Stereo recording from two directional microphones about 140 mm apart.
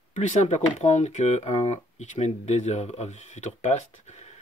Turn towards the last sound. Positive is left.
turn(degrees=55)  # may be behind; listen again after turning